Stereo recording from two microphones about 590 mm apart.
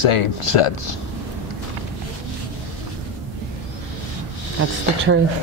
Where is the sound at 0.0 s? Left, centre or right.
Left.